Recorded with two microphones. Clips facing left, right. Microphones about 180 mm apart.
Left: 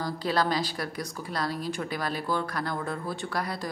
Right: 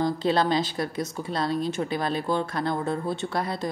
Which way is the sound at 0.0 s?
25° right (ahead or behind).